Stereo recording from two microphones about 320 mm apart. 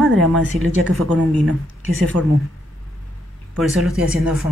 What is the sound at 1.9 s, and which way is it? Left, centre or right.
Speech, right.